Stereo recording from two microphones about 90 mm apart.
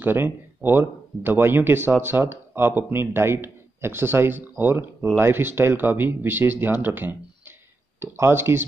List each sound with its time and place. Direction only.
0.0 s speech: 20° right (ahead or behind)